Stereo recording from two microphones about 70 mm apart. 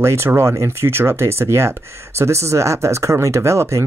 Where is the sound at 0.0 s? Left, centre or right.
Right.